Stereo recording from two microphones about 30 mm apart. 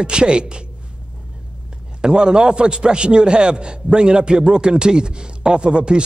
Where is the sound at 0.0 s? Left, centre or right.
Right.